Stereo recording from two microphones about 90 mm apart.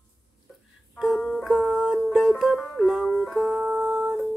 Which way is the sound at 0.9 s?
Centre (ahead or behind).